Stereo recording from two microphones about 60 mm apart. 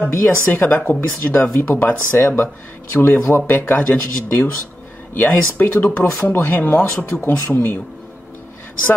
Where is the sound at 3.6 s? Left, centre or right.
Left.